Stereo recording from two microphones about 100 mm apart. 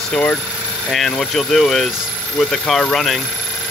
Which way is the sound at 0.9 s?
5° left (ahead or behind).